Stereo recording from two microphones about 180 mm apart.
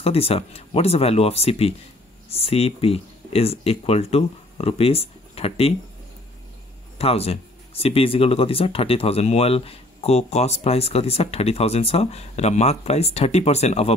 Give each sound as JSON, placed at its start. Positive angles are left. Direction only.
{"t": 0.0, "sound": "speech", "side_deg": 35}
{"t": 7.0, "sound": "speech", "side_deg": 35}